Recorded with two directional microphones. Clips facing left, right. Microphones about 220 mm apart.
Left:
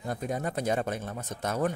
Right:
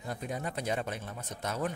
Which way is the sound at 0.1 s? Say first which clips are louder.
Left 5 dB; 45° left (ahead or behind).